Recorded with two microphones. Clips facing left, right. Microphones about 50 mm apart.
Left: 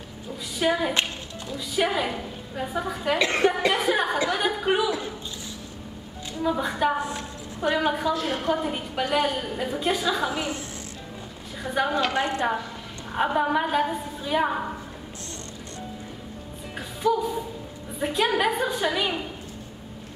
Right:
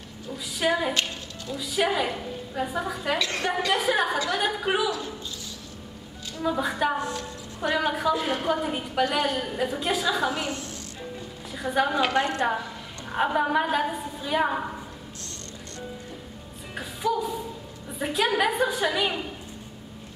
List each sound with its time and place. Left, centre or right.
0.6 s a woman's voice: centre
3.2 s a woman's voice: left
3.7 s a woman's voice: centre
6.4 s a woman's voice: centre
7.0 s a woman's voice: left
7.6 s a woman's voice: centre
8.1 s a woman's voice: centre
8.4 s a woman's voice: centre
11.6 s a woman's voice: centre
16.7 s music: centre
17.9 s a woman's voice: centre